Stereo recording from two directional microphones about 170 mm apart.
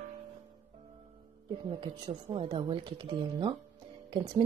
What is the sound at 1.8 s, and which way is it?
Speech, 30° right (ahead or behind).